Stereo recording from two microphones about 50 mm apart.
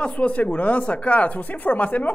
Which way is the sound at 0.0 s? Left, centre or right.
Left.